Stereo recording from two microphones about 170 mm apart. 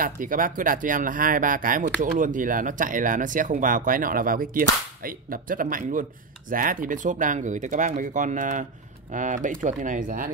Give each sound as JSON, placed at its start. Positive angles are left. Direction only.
{"t": 0.0, "sound": "speech", "side_deg": -55}